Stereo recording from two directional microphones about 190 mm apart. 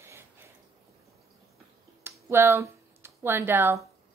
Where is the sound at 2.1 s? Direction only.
15° right (ahead or behind).